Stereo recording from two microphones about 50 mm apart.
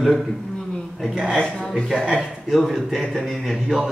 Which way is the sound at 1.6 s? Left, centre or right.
Centre.